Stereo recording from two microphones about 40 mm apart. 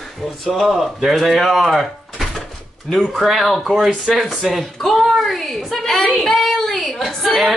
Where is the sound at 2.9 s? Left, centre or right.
Centre.